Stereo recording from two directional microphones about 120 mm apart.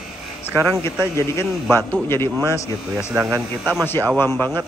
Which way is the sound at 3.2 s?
25° right (ahead or behind).